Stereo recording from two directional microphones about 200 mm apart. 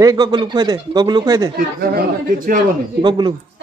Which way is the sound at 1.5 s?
50° right (ahead or behind).